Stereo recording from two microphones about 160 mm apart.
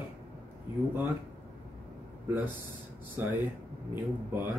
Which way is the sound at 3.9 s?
15° right (ahead or behind).